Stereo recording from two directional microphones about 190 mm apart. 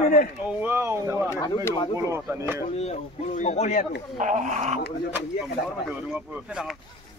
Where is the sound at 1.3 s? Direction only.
15° left (ahead or behind).